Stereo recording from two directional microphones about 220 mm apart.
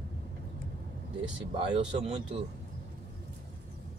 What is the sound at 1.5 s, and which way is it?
Speech, 25° right (ahead or behind).